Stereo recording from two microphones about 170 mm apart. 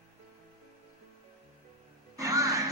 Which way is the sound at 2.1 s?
20° right (ahead or behind).